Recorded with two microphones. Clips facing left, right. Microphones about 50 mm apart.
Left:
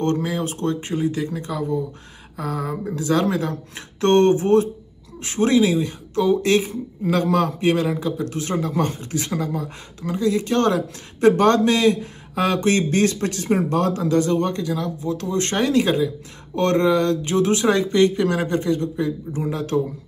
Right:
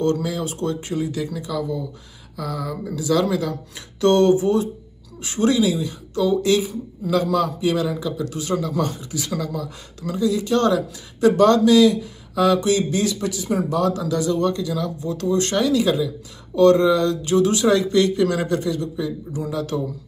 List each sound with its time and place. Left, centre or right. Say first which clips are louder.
0.0 s speech: even; left